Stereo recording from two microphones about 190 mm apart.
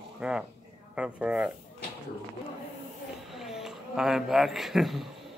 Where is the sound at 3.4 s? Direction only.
Centre (ahead or behind).